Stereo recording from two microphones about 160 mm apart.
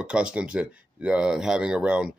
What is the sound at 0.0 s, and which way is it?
Speech, 5° right (ahead or behind).